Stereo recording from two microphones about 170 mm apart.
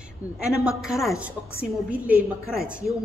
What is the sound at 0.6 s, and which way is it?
A woman's voice, 5° right (ahead or behind).